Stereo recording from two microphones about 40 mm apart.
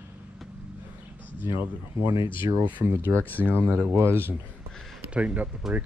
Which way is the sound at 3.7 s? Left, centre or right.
Right.